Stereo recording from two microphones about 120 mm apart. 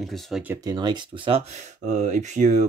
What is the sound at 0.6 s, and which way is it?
Speech, 35° right (ahead or behind).